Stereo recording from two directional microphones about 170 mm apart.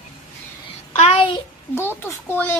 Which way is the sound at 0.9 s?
35° left (ahead or behind).